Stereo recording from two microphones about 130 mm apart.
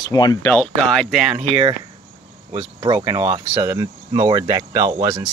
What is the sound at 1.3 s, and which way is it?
Speech, 50° right (ahead or behind).